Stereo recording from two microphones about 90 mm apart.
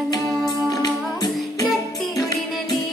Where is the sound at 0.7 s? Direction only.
40° left (ahead or behind).